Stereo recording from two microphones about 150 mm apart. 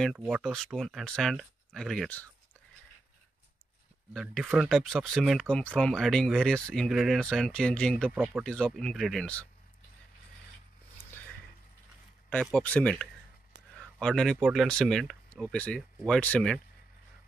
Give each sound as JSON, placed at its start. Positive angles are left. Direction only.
{"t": 0.2, "sound": "speech", "side_deg": -5}
{"t": 4.1, "sound": "speech", "side_deg": 0}
{"t": 8.1, "sound": "speech", "side_deg": -5}
{"t": 8.5, "sound": "speech", "side_deg": 5}
{"t": 11.1, "sound": "a sound", "side_deg": 10}
{"t": 12.3, "sound": "speech", "side_deg": 5}